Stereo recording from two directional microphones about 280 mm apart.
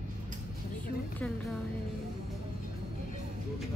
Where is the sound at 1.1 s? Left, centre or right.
Centre.